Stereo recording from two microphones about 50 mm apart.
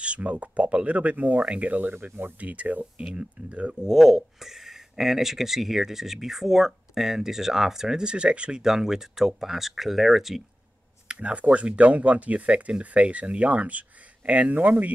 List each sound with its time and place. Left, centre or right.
0.0 s speech: right
3.8 s speech: centre
8.6 s speech: centre
11.1 s speech: right